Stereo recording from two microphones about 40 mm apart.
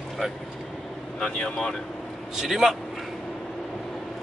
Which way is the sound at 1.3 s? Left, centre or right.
Left.